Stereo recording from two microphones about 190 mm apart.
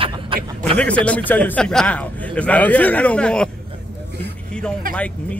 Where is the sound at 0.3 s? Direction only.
30° right (ahead or behind).